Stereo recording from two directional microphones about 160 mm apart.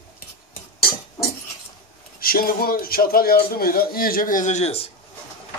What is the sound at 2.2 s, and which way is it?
A man's voice, 65° left (ahead or behind).